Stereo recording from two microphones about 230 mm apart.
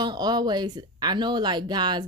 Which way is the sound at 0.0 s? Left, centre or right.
Centre.